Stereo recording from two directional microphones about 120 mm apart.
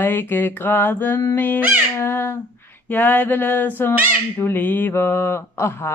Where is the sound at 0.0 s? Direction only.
20° left (ahead or behind).